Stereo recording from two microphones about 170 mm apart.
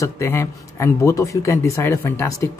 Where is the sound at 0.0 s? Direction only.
15° left (ahead or behind).